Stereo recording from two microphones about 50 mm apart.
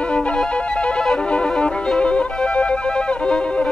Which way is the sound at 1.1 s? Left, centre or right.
Left.